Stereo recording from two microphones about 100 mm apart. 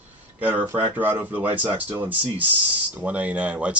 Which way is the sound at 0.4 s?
15° right (ahead or behind).